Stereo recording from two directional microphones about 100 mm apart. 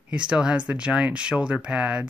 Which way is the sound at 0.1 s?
10° right (ahead or behind).